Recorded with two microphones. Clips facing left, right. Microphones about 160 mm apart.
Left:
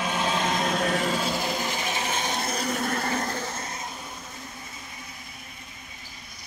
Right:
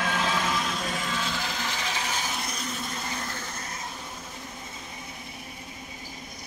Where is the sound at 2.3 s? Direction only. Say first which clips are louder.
Left 5 dB; 35° left (ahead or behind).